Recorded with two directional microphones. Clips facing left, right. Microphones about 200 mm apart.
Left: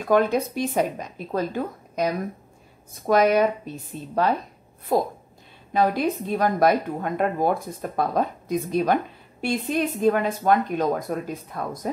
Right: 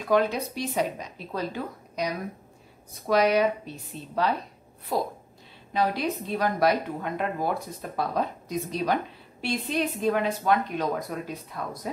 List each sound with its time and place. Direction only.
0.0 s a woman's voice: 50° left (ahead or behind)